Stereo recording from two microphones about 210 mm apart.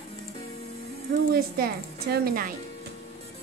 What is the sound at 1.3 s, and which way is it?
A woman's voice, 45° right (ahead or behind).